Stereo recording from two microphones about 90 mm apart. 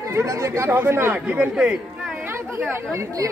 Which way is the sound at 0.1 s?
35° right (ahead or behind).